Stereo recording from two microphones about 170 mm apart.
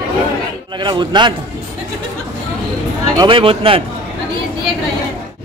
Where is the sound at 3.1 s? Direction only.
25° right (ahead or behind).